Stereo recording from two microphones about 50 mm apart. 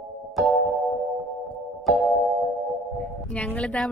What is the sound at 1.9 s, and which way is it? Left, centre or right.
Music, centre.